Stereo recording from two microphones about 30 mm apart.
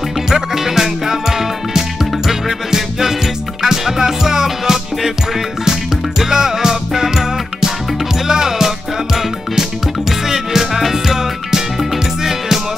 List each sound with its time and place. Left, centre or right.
0.3 s music: centre